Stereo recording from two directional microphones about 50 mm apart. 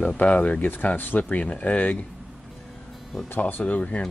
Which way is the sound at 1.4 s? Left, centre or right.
Left.